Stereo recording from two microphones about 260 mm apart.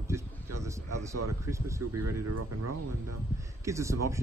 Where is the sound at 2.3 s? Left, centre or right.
Right.